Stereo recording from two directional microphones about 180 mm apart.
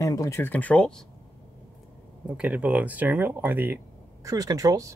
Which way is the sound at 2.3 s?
5° right (ahead or behind).